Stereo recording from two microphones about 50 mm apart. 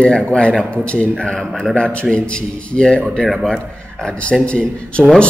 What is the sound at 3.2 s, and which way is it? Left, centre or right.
Speech, centre.